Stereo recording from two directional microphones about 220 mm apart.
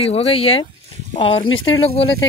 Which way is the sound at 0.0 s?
25° left (ahead or behind).